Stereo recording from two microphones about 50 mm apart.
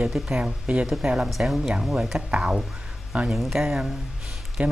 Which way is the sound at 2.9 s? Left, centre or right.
Centre.